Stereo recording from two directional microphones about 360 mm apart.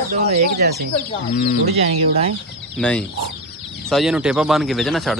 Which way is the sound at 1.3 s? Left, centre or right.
Left.